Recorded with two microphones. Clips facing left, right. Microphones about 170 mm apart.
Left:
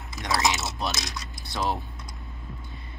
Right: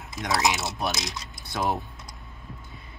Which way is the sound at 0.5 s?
15° right (ahead or behind).